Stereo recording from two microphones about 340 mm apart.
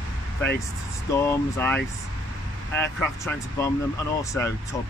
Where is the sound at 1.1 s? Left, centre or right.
Centre.